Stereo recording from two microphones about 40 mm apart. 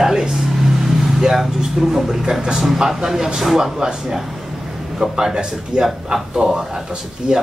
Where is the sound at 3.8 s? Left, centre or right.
Centre.